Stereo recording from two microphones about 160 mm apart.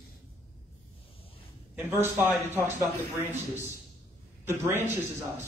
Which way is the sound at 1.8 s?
15° right (ahead or behind).